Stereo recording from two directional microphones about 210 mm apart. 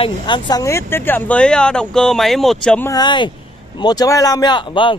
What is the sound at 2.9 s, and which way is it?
A man's voice, 20° left (ahead or behind).